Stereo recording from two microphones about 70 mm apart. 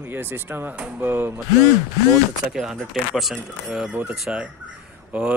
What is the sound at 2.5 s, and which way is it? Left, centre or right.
Speech, centre.